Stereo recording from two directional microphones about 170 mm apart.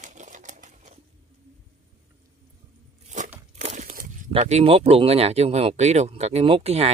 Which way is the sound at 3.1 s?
45° right (ahead or behind).